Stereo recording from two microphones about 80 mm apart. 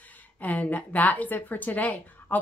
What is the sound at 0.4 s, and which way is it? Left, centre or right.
A woman's voice, left.